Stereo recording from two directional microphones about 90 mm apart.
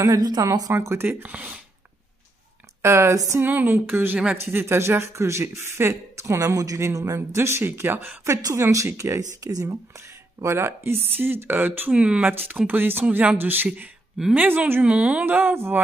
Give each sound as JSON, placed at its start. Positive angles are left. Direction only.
{"t": 0.0, "sound": "a woman's voice", "side_deg": -45}
{"t": 0.7, "sound": "speech", "side_deg": -30}
{"t": 2.8, "sound": "a woman's voice", "side_deg": -30}